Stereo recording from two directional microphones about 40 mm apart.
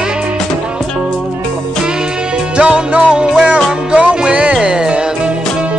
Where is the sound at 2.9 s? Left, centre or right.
Right.